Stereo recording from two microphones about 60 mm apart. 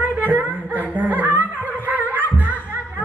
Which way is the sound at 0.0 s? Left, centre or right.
Right.